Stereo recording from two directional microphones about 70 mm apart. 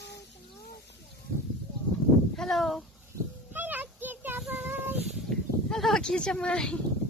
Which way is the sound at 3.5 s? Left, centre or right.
Right.